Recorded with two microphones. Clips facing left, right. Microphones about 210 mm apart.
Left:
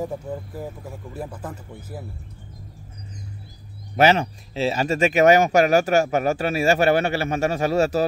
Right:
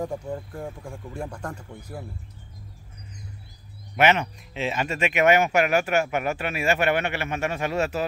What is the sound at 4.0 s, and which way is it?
Speech, 35° left (ahead or behind).